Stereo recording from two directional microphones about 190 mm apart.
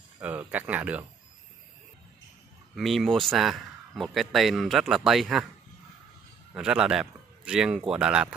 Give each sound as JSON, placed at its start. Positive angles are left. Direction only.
{"t": 0.2, "sound": "speech", "side_deg": -10}
{"t": 2.7, "sound": "a man's voice", "side_deg": 0}
{"t": 6.5, "sound": "a man's voice", "side_deg": -5}